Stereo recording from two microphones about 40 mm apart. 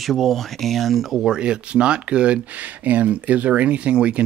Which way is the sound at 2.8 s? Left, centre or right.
Right.